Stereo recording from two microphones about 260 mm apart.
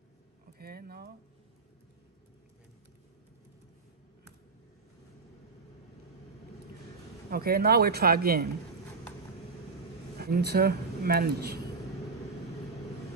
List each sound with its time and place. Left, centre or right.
0.6 s speech: right
7.2 s a man's voice: right
10.1 s a man's voice: right